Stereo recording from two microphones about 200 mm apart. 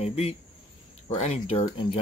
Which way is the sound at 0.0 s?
30° left (ahead or behind).